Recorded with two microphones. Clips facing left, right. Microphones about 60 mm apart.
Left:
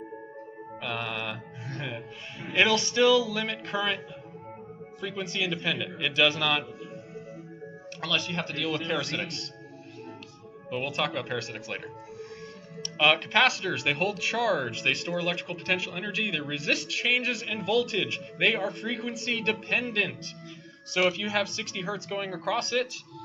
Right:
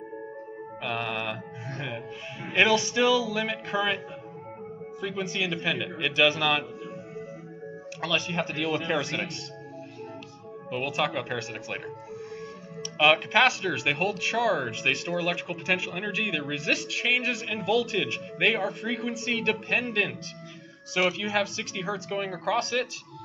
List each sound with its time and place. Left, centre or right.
0.8 s music: centre
2.4 s speech: centre
5.0 s speech: centre
8.0 s speech: centre
10.7 s speech: centre
12.8 s speech: centre